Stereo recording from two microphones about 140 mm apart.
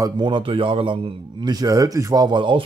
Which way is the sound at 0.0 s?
35° right (ahead or behind).